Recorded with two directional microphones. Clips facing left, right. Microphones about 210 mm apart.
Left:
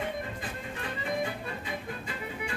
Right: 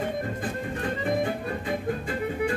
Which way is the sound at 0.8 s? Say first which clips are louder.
Right 6 dB; 50° right (ahead or behind).